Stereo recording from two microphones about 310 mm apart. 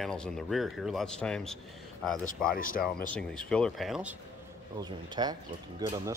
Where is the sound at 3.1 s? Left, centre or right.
Centre.